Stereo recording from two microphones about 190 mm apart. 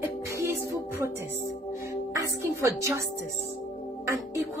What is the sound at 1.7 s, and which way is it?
Music, 15° right (ahead or behind).